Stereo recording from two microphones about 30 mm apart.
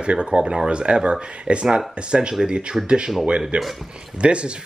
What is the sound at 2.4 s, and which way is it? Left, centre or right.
Speech, centre.